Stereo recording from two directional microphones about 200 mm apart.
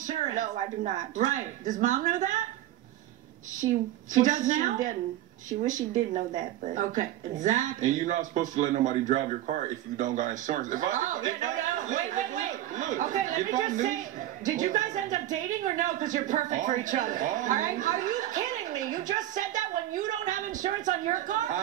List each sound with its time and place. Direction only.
0.0 s speech: 40° right (ahead or behind)
3.6 s a woman's voice: 20° right (ahead or behind)
4.1 s speech: 40° right (ahead or behind)